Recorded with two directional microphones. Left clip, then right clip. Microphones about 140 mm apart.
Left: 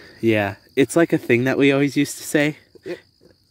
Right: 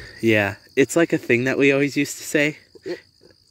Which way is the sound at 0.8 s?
15° left (ahead or behind).